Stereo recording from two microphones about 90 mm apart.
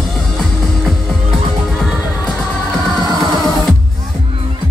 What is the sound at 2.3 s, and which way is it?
Music, centre (ahead or behind).